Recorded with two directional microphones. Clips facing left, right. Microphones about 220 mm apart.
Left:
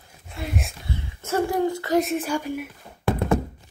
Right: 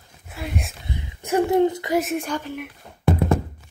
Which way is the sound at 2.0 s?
Centre (ahead or behind).